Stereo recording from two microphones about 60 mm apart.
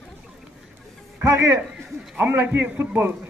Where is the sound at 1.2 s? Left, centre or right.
Right.